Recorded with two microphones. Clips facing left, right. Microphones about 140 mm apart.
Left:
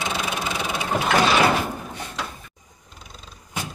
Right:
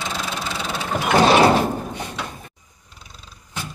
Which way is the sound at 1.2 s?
35° right (ahead or behind).